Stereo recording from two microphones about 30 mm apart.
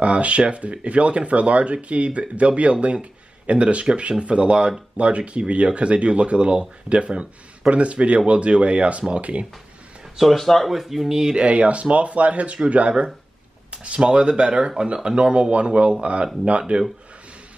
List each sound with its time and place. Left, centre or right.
0.0 s a sound: right
0.4 s speech: right
10.3 s speech: centre
10.7 s speech: centre
11.1 s speech: right
11.3 s speech: right